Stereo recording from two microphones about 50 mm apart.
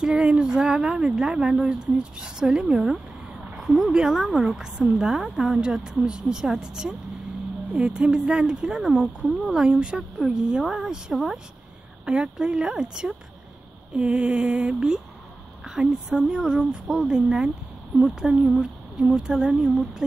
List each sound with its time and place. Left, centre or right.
0.0 s speech: centre